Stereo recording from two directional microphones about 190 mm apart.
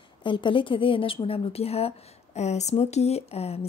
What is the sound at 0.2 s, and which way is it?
Speech, 25° left (ahead or behind).